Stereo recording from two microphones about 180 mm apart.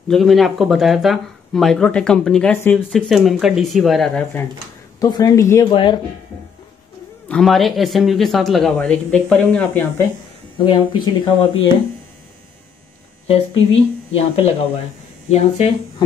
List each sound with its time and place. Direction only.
0.1 s speech: centre (ahead or behind)
5.0 s speech: 20° left (ahead or behind)
5.7 s speech: 25° left (ahead or behind)
7.2 s speech: centre (ahead or behind)
10.6 s speech: 30° left (ahead or behind)
14.1 s speech: 35° left (ahead or behind)